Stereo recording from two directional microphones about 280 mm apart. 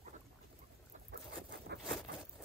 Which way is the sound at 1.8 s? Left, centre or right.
Centre.